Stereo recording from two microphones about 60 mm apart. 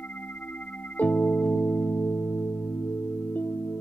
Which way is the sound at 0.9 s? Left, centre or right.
Left.